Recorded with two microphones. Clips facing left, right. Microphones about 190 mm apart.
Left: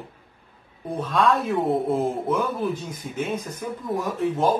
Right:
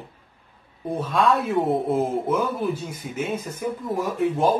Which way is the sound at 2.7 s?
5° right (ahead or behind).